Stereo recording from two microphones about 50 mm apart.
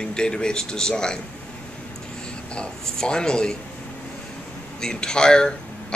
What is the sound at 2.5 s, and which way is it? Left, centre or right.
Speech, centre.